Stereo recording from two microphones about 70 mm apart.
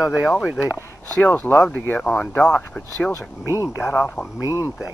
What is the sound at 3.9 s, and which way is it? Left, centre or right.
Speech, left.